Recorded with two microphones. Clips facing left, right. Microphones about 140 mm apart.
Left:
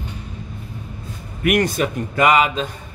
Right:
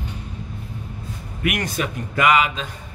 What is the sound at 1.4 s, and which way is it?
Speech, 50° left (ahead or behind).